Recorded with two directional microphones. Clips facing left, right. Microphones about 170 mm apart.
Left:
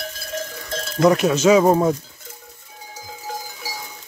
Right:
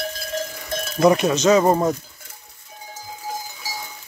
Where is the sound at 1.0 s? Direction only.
Centre (ahead or behind).